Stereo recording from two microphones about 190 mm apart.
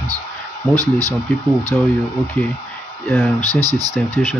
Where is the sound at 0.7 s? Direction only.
20° right (ahead or behind).